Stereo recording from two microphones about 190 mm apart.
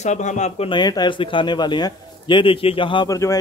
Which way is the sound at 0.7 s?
20° left (ahead or behind).